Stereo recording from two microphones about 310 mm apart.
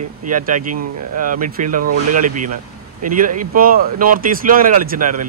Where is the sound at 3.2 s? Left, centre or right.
Right.